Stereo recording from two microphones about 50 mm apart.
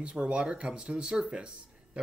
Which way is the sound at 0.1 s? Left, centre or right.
Centre.